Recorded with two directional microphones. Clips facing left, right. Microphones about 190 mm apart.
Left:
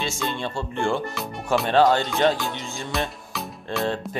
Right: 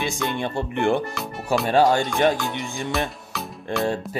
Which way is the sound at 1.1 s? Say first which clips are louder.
Even; centre (ahead or behind).